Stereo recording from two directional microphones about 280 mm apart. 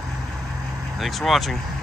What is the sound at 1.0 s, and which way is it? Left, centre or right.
Speech, centre.